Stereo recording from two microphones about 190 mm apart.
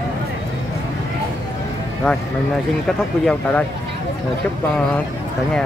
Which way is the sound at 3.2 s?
10° left (ahead or behind).